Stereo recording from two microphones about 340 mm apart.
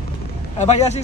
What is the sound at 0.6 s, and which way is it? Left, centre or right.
Speech, centre.